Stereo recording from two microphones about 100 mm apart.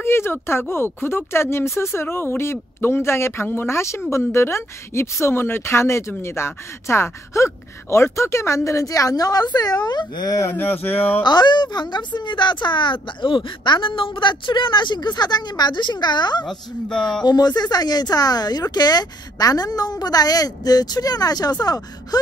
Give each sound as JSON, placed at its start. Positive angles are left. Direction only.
{"t": 0.0, "sound": "speech", "side_deg": 25}
{"t": 11.2, "sound": "a woman's voice", "side_deg": 50}